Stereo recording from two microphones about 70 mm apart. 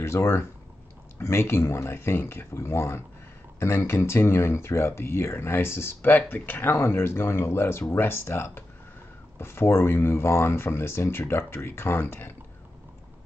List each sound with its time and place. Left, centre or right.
0.0 s speech: left